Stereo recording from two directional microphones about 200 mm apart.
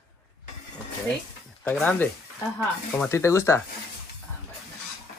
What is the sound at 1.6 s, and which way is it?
Speech, 10° left (ahead or behind).